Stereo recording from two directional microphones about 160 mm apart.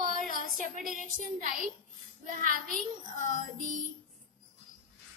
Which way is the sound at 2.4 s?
60° right (ahead or behind).